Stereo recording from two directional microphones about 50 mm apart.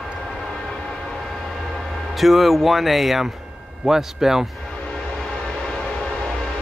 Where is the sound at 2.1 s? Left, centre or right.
Centre.